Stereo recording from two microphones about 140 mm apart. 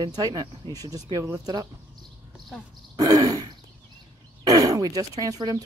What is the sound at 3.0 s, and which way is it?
Throat clearing, 25° right (ahead or behind).